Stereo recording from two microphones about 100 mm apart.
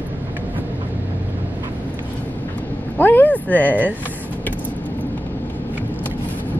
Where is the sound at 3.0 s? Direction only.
20° left (ahead or behind).